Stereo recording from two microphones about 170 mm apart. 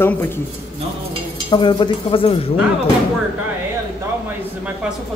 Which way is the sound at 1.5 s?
30° left (ahead or behind).